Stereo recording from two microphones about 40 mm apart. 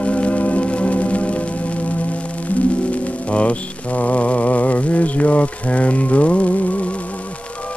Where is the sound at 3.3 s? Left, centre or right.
Left.